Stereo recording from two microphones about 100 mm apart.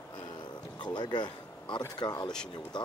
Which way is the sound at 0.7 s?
45° left (ahead or behind).